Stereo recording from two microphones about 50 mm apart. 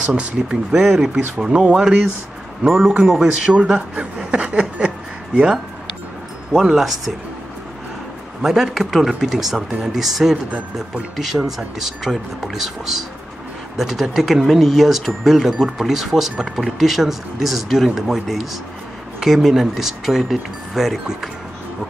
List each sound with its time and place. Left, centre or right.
0.0 s speech: centre
0.7 s speech: centre
1.4 s speech: centre
4.3 s a sound: right
6.6 s speech: centre
8.4 s speech: centre